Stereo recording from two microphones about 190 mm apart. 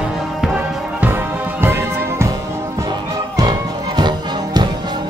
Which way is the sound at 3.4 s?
20° right (ahead or behind).